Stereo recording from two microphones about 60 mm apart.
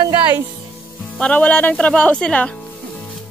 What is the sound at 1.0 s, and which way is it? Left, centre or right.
Speech, centre.